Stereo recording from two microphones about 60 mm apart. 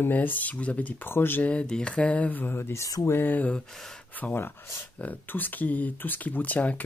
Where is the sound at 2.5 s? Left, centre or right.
Left.